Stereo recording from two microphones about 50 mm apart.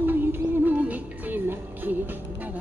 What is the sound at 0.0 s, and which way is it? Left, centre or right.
Music, right.